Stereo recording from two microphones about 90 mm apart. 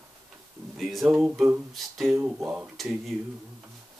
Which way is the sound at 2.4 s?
20° right (ahead or behind).